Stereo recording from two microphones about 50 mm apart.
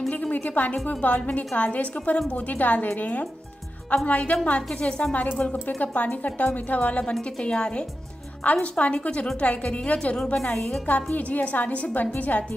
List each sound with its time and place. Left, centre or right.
0.1 s a woman's voice: left
5.1 s a woman's voice: left
10.9 s a woman's voice: left